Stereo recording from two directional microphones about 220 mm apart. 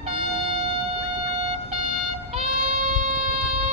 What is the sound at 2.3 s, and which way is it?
Music, 30° right (ahead or behind).